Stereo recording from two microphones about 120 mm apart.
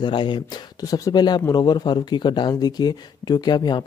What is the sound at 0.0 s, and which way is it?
Speech, 40° left (ahead or behind).